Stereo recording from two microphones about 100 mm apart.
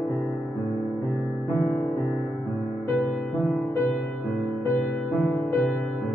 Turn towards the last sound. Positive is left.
turn(degrees=20)  # may be behind; listen again after turning